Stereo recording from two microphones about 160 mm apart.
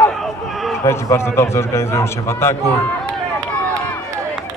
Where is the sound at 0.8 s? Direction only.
15° left (ahead or behind).